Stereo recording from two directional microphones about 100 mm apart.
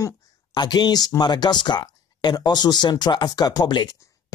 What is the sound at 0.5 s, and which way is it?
Speech, 45° left (ahead or behind).